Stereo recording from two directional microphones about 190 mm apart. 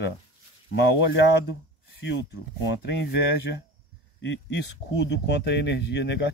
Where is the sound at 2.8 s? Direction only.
65° left (ahead or behind).